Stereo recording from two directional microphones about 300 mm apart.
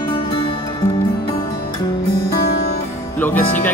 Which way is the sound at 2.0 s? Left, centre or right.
Left.